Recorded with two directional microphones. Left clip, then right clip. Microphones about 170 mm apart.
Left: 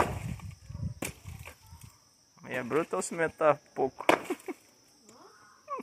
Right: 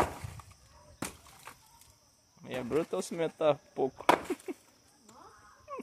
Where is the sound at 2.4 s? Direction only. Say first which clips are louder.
Left 2 dB; 15° right (ahead or behind).